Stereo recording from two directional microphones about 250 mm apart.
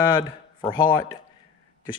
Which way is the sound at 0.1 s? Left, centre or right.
Centre.